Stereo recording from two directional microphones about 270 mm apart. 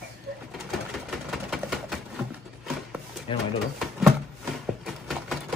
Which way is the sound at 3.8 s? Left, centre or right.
Centre.